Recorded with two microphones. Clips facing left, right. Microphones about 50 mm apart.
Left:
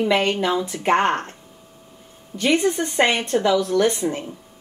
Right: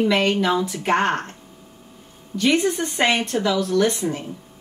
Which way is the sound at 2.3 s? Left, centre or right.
Centre.